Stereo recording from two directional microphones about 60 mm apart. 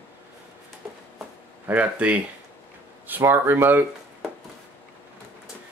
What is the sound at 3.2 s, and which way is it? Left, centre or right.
Speech, right.